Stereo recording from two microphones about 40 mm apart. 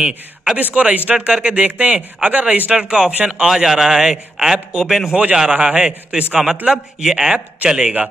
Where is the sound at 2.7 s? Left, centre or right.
Right.